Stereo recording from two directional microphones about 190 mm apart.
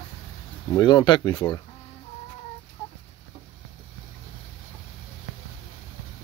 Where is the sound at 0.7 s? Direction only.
20° left (ahead or behind).